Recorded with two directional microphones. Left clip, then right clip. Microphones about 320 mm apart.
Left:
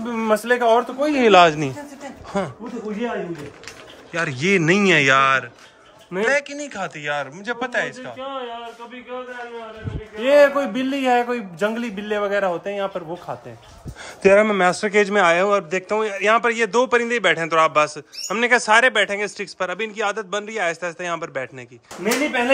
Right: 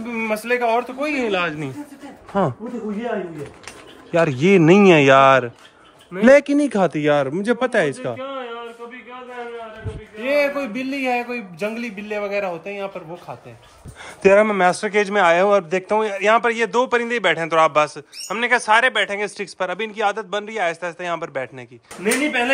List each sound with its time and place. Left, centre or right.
0.0 s a man's voice: centre
4.1 s speech: centre
10.2 s a man's voice: centre
14.2 s a man's voice: centre